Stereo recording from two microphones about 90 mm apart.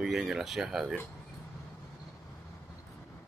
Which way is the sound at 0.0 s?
5° right (ahead or behind).